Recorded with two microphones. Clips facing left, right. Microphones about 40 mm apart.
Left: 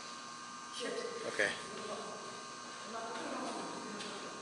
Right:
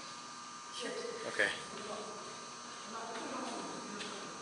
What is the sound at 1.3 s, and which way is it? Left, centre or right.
Speech, centre.